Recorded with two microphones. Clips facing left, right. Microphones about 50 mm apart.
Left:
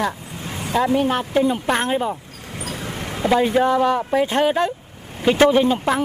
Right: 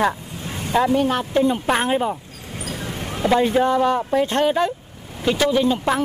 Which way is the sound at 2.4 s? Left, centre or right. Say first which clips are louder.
Even; left.